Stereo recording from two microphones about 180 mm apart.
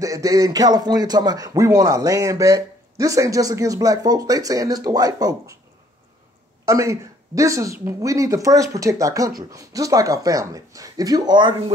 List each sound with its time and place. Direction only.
0.0 s speech: 20° right (ahead or behind)
6.6 s speech: 15° right (ahead or behind)